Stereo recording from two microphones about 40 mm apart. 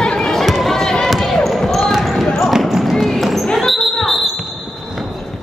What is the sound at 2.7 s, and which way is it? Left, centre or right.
Music, centre.